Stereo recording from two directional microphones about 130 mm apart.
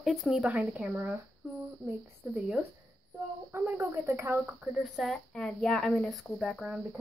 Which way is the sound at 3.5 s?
15° right (ahead or behind).